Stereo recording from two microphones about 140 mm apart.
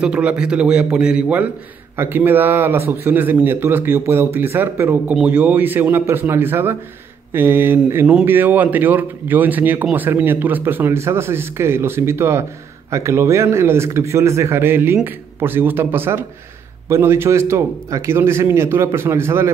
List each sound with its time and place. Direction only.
0.0 s a man's voice: 10° right (ahead or behind)